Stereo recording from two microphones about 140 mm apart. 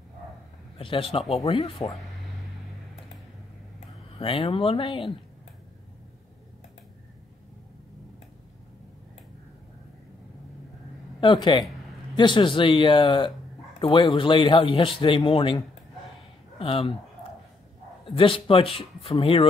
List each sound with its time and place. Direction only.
0.7 s a man's voice: 40° left (ahead or behind)
4.2 s a man's voice: 40° left (ahead or behind)
11.1 s a man's voice: 30° left (ahead or behind)
18.1 s a man's voice: 40° left (ahead or behind)